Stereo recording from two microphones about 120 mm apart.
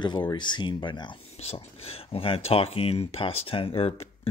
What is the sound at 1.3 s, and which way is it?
Speech, 55° left (ahead or behind).